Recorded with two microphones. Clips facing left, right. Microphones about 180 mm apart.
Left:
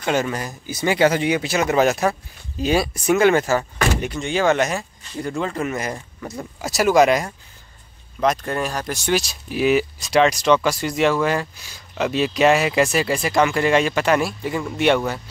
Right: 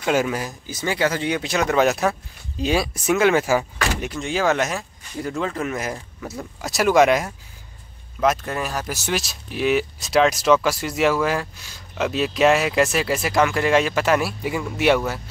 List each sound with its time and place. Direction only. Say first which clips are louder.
0.0 s speech: right 1 dB; 5° right (ahead or behind)
0.7 s speech: left 5 dB; 15° left (ahead or behind)
1.3 s speech: left 1 dB; 5° left (ahead or behind)